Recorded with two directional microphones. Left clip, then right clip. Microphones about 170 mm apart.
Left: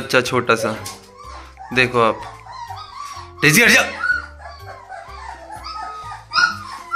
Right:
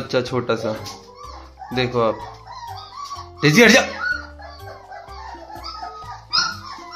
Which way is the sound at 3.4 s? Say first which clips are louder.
Left 1 dB; centre (ahead or behind).